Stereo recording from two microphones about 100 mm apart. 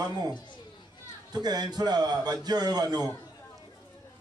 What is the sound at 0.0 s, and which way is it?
Speech, 40° right (ahead or behind).